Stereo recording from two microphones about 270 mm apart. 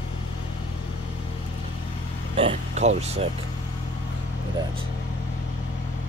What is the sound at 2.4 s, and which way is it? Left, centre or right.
Speech, right.